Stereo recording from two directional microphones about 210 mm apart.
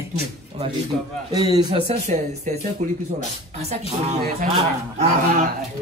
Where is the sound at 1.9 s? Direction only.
35° right (ahead or behind).